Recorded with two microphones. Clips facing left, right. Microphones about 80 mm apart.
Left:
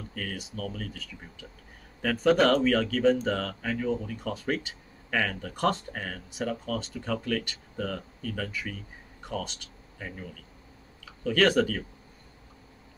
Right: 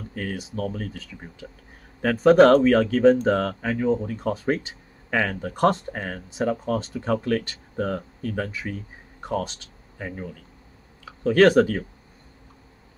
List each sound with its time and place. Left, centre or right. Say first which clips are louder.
0.1 s speech: right 7 dB; right
2.0 s speech: right 8 dB; right